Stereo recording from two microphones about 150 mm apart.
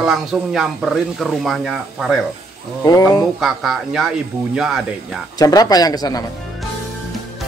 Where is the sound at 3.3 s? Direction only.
Centre (ahead or behind).